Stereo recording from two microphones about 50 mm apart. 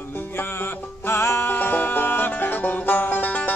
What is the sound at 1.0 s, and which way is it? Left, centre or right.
Music, left.